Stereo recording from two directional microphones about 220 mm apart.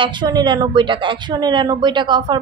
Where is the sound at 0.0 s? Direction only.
20° right (ahead or behind).